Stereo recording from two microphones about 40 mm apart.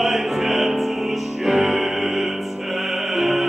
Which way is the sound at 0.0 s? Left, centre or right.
Centre.